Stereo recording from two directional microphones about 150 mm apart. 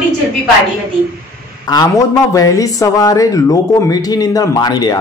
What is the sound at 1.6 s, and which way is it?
Speech, 25° left (ahead or behind).